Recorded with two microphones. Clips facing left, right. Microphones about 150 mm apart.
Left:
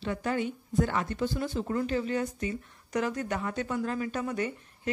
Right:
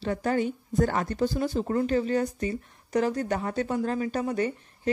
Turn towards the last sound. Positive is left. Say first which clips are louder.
# right 5 dB
turn(degrees=-35)  # may be behind; listen again after turning